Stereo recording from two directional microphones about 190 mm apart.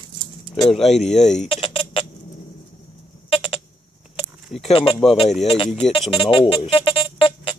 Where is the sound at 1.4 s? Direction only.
30° left (ahead or behind).